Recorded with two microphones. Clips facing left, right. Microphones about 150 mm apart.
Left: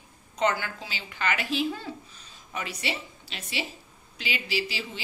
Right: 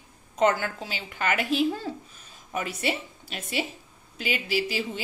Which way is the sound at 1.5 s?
45° right (ahead or behind).